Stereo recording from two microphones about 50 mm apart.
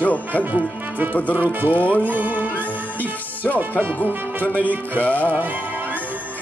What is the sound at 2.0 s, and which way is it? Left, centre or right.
Music, right.